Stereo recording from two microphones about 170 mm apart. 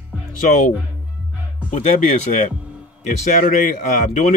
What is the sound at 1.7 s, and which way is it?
Speech, 45° left (ahead or behind).